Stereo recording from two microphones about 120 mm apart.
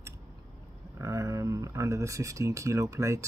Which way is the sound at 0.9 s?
25° right (ahead or behind).